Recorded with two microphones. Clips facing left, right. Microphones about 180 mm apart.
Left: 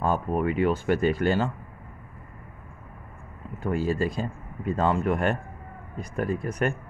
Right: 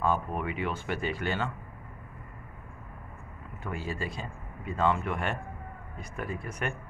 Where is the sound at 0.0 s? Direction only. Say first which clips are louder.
Left 4 dB; 40° left (ahead or behind).